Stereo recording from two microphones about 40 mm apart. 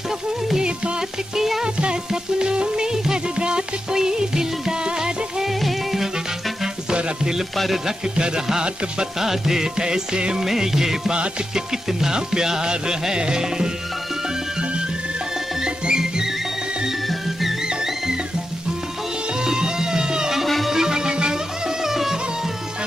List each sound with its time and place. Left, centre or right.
0.6 s music: right
1.3 s music: centre
1.6 s music: right
6.6 s music: centre
7.5 s speech: centre
7.8 s music: centre
15.6 s music: centre
19.4 s music: centre
20.4 s music: centre
20.7 s music: centre
21.8 s music: centre